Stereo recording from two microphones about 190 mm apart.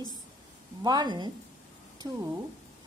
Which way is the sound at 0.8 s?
20° right (ahead or behind).